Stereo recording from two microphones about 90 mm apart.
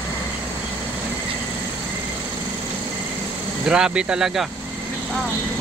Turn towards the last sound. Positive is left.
turn(degrees=-5)  # may be behind; listen again after turning